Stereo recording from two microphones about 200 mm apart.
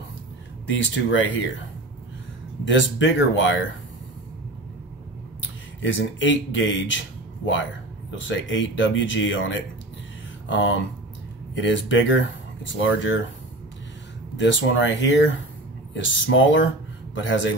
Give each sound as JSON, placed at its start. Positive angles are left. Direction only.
{"t": 0.7, "sound": "speech", "side_deg": 70}
{"t": 2.6, "sound": "speech", "side_deg": 70}
{"t": 5.4, "sound": "speech", "side_deg": 70}
{"t": 8.2, "sound": "speech", "side_deg": 70}
{"t": 14.3, "sound": "speech", "side_deg": 65}